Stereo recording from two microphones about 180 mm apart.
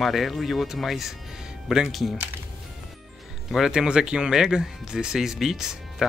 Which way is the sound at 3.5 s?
5° right (ahead or behind).